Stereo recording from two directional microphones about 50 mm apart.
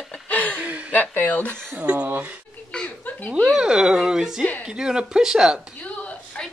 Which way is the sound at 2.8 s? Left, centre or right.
Left.